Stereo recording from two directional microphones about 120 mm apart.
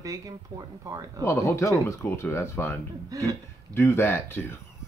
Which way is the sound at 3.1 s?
30° right (ahead or behind).